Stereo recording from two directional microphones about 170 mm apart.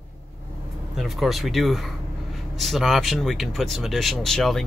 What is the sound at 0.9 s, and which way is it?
Speech, centre (ahead or behind).